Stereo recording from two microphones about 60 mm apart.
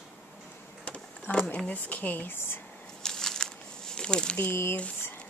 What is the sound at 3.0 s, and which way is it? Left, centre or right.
Crumpling, centre.